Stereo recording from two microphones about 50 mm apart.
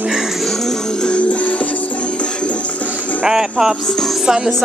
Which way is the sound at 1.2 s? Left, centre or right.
Left.